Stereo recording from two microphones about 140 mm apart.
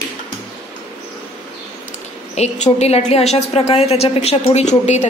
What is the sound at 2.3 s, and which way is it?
A woman's voice, 50° left (ahead or behind).